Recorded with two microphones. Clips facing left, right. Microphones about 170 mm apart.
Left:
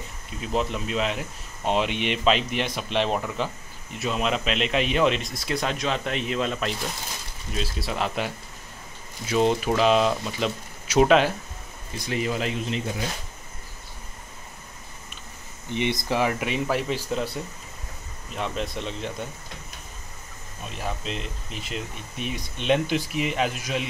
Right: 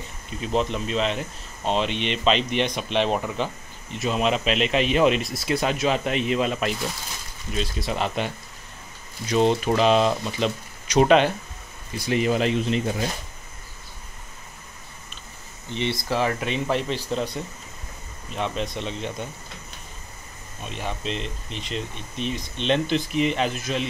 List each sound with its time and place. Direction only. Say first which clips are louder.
0.4 s speech: right 2 dB; 5° left (ahead or behind)
12.1 s speech: right 5 dB; 20° right (ahead or behind)
15.7 s speech: even; 15° left (ahead or behind); by 19.2 s centre (ahead or behind)
20.6 s speech: right 2 dB; centre (ahead or behind)